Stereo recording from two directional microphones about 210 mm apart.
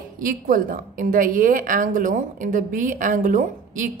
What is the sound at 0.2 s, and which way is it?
A woman's voice, 40° right (ahead or behind).